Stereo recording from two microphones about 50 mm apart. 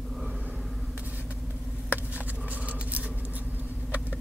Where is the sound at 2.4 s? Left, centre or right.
Right.